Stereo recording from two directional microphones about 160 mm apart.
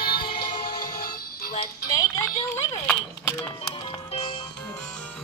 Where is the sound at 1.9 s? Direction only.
20° left (ahead or behind).